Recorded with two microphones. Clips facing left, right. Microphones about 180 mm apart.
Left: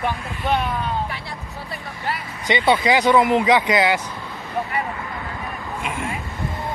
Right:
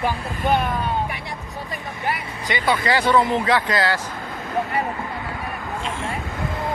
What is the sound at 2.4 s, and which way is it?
Speech, 25° left (ahead or behind).